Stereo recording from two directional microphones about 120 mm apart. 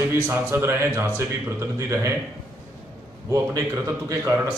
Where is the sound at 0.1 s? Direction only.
20° right (ahead or behind).